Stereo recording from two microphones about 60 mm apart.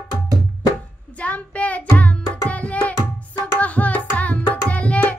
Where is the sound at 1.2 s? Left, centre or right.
Left.